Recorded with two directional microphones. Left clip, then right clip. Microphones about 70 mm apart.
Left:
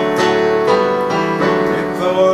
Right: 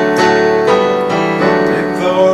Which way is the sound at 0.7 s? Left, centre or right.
Centre.